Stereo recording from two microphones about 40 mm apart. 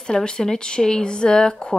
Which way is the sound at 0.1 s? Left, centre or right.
Centre.